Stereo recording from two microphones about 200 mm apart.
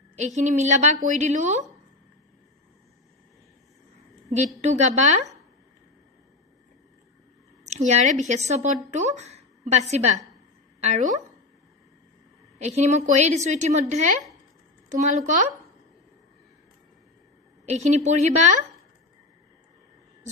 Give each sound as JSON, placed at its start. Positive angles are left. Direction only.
{"t": 0.4, "sound": "a woman's voice", "side_deg": -35}
{"t": 4.6, "sound": "a woman's voice", "side_deg": -35}
{"t": 7.6, "sound": "a woman's voice", "side_deg": -35}
{"t": 12.5, "sound": "a woman's voice", "side_deg": -35}
{"t": 17.6, "sound": "a woman's voice", "side_deg": -35}